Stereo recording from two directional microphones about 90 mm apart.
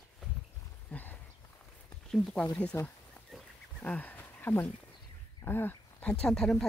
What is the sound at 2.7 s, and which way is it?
Speech, 25° left (ahead or behind).